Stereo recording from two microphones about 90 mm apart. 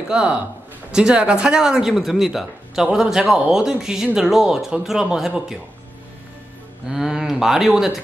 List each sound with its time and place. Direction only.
0.1 s speech: 10° right (ahead or behind)
6.9 s speech: 5° right (ahead or behind)